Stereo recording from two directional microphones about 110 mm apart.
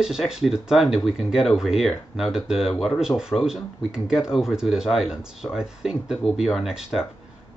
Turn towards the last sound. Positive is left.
turn(degrees=-5)  # may be behind; listen again after turning